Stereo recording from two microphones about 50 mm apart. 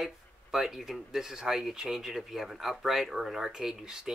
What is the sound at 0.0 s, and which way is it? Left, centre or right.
Speech, centre.